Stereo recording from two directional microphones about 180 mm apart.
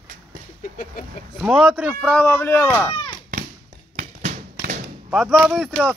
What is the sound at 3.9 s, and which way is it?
Tap, 40° right (ahead or behind).